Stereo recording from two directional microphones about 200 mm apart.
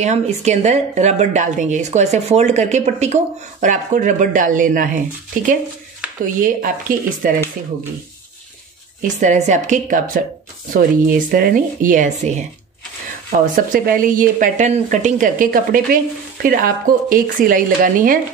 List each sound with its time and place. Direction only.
0.0 s a woman's voice: 35° right (ahead or behind)
6.2 s a woman's voice: 40° right (ahead or behind)
9.0 s a woman's voice: 35° right (ahead or behind)